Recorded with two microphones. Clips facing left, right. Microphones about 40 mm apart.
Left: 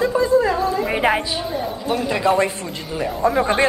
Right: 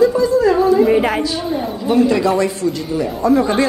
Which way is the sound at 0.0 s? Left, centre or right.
Left.